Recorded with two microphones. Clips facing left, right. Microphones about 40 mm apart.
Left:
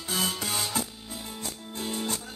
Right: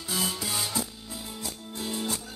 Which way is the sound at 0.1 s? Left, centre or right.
Left.